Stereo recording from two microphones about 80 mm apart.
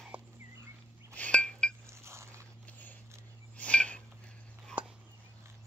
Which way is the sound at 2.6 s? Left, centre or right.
Left.